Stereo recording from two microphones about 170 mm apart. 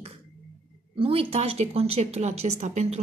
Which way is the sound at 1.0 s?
35° right (ahead or behind).